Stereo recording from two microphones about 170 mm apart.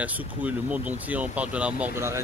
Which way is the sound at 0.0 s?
10° right (ahead or behind).